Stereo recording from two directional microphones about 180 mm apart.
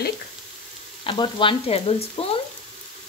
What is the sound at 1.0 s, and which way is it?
Frying, 30° left (ahead or behind).